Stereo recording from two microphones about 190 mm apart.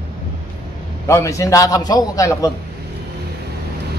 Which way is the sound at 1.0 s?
15° left (ahead or behind).